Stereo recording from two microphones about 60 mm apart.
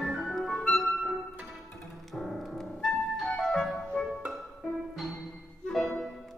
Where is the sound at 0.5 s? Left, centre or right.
Centre.